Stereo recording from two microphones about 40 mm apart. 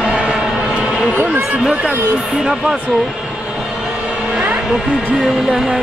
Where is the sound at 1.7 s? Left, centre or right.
Right.